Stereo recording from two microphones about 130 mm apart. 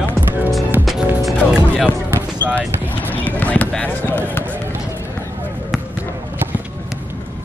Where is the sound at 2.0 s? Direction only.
15° right (ahead or behind).